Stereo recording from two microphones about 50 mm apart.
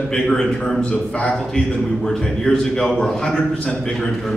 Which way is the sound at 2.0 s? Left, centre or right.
Centre.